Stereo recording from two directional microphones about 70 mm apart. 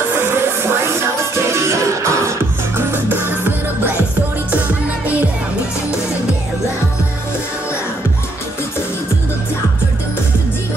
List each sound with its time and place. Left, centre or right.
1.5 s music: right
2.9 s music: right